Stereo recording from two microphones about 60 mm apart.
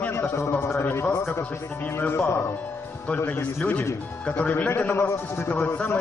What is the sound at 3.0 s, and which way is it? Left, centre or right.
A man's voice, left.